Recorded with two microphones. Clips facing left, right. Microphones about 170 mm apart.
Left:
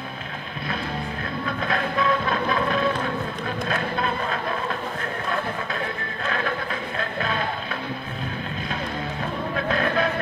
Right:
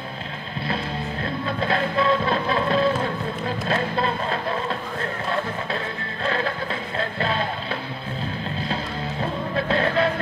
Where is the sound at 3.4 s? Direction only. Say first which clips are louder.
Right 4 dB; 30° right (ahead or behind).